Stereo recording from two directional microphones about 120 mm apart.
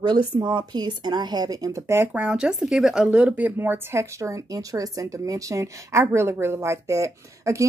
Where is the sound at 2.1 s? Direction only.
10° right (ahead or behind).